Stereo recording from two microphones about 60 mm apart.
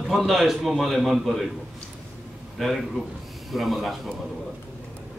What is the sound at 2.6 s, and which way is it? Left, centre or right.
A man's voice, centre.